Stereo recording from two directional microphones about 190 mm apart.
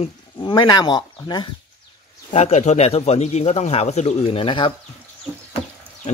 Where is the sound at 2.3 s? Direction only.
35° left (ahead or behind).